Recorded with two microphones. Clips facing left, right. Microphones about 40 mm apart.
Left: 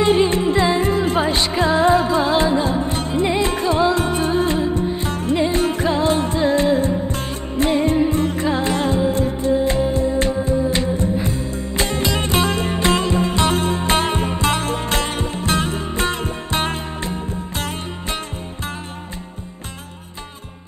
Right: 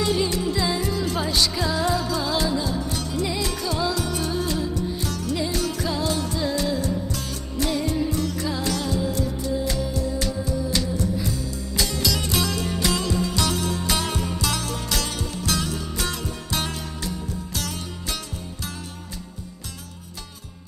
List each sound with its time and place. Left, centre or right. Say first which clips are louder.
0.0 s music: left 7 dB; left